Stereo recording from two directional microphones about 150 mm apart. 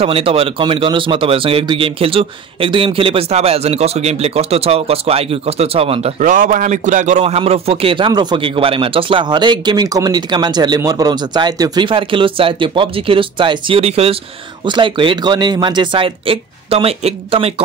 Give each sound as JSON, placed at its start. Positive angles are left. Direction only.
{"t": 0.0, "sound": "a man's voice", "side_deg": -40}
{"t": 6.1, "sound": "a man's voice", "side_deg": -60}